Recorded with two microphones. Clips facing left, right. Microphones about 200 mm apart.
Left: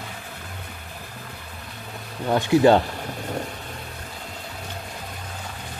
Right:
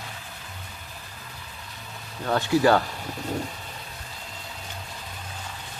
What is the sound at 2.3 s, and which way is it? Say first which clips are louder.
Speech: left 4 dB; 20° left (ahead or behind).